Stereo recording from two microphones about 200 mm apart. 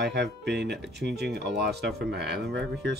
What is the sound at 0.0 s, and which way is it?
Speech, 55° right (ahead or behind).